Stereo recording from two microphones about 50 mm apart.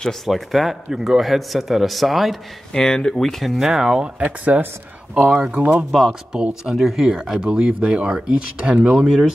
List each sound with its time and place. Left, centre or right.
0.3 s speech: centre
2.7 s speech: centre
3.7 s speech: centre
4.5 s speech: right
5.1 s speech: centre
5.5 s speech: right
5.9 s speech: centre
6.3 s speech: centre
7.4 s speech: centre
8.9 s speech: centre